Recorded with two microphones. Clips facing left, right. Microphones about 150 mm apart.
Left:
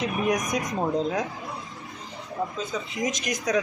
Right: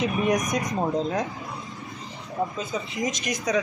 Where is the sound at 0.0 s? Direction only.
Centre (ahead or behind).